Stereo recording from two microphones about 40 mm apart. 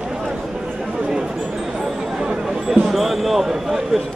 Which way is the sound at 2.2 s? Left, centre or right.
Centre.